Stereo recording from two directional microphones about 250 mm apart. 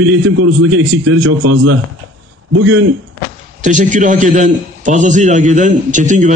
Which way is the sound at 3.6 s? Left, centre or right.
Right.